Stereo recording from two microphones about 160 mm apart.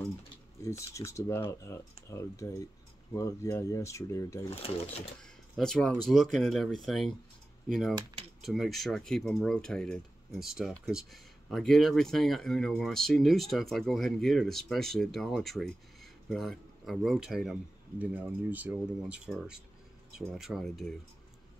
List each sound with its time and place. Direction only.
0.7 s speech: 20° left (ahead or behind)
4.5 s speech: 35° left (ahead or behind)
5.2 s speech: 5° left (ahead or behind)